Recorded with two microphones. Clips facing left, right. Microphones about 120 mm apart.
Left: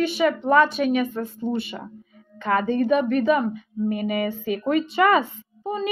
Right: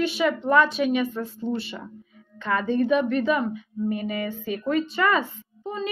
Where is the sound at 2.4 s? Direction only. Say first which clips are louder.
Left 2 dB; 10° left (ahead or behind).